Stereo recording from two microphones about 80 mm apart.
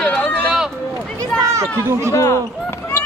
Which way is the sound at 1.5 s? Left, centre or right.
Right.